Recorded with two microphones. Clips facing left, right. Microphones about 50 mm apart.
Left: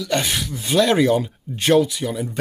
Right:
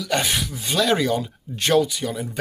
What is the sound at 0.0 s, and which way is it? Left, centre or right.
Speech, centre.